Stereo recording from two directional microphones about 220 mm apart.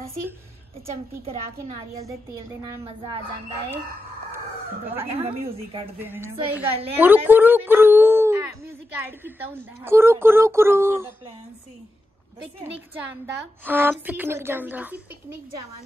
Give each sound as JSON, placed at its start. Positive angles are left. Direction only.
{"t": 0.8, "sound": "a child's voice", "side_deg": -30}
{"t": 5.9, "sound": "a woman's voice", "side_deg": -10}
{"t": 13.7, "sound": "a woman's voice", "side_deg": -10}